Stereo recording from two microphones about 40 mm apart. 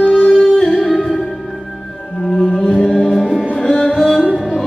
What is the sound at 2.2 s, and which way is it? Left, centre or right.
Music, centre.